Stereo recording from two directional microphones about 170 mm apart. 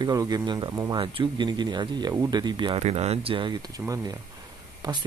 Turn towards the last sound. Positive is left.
turn(degrees=-25)  # may be behind; listen again after turning